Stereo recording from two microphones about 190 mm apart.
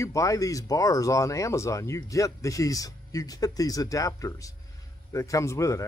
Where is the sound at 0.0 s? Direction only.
15° left (ahead or behind).